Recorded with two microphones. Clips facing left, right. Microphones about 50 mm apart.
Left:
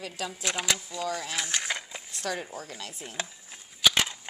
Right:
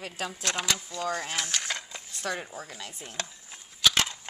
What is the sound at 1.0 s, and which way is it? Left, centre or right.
Speech, right.